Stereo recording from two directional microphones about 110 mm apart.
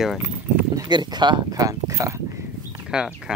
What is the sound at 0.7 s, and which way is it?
Speech, 40° right (ahead or behind).